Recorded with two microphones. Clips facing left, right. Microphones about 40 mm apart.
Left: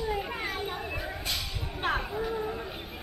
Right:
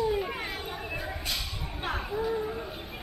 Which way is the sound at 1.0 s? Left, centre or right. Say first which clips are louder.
Even; centre.